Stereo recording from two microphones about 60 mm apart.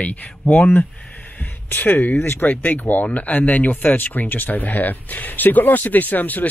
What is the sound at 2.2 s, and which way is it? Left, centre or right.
Speech, left.